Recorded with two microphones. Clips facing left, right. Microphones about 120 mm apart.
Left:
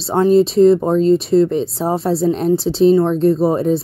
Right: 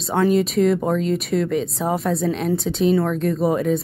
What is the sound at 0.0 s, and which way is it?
Speech, 30° left (ahead or behind).